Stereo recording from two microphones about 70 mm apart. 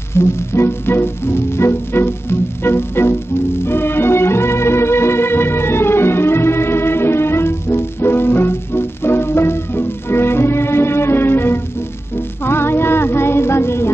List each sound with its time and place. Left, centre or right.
0.1 s music: left